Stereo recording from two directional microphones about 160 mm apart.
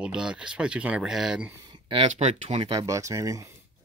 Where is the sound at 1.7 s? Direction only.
30° right (ahead or behind).